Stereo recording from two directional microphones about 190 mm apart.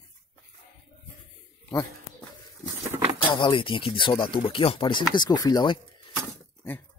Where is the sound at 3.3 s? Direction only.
25° left (ahead or behind).